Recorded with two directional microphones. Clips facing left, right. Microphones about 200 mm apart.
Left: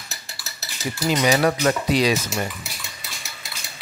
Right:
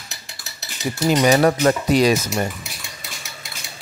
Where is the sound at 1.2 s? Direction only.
45° right (ahead or behind).